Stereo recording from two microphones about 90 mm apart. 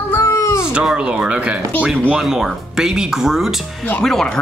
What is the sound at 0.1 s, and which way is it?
Baby cry, 30° left (ahead or behind).